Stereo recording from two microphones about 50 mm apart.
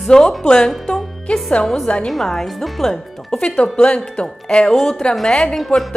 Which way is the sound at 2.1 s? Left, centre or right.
Centre.